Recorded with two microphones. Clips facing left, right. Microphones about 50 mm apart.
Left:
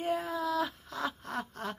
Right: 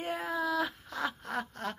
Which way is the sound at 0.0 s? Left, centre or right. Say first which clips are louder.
Left 1 dB; centre.